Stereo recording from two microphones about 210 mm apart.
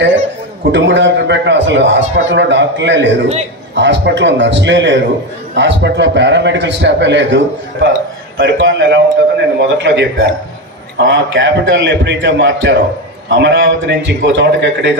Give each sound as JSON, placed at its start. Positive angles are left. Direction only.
{"t": 0.7, "sound": "a man's voice", "side_deg": -60}